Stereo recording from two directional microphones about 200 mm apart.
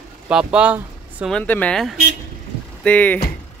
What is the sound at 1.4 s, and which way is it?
Speech, 5° left (ahead or behind).